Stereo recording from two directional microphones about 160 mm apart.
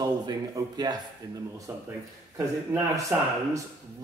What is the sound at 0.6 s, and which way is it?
Speech, 20° right (ahead or behind).